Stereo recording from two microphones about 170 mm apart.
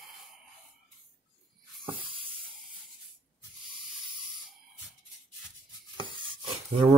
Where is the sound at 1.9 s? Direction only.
30° right (ahead or behind).